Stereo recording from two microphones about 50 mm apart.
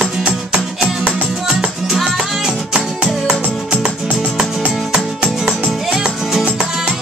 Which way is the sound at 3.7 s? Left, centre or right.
Right.